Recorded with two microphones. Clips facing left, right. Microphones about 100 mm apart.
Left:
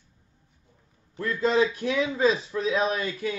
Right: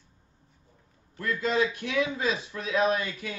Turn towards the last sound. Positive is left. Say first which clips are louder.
# even
turn(degrees=30)  # may be behind; listen again after turning